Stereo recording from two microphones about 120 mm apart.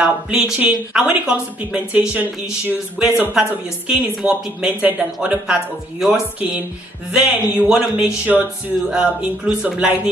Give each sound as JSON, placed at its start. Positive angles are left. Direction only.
{"t": 0.0, "sound": "speech", "side_deg": -10}